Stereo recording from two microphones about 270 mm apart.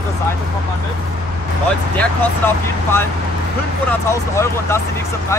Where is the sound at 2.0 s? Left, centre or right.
Centre.